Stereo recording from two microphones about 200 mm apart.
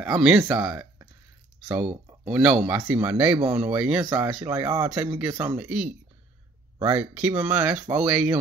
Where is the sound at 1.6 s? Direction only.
5° right (ahead or behind).